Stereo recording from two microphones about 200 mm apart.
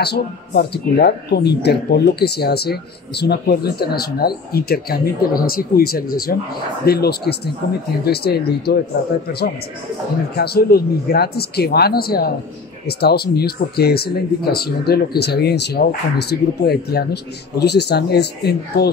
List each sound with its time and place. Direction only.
0.0 s speech: 55° left (ahead or behind)
10.3 s speech: 50° left (ahead or behind)